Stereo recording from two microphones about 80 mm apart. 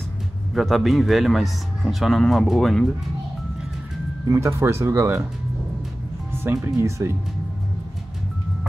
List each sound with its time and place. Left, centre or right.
0.6 s speech: centre
4.3 s speech: right
6.4 s speech: right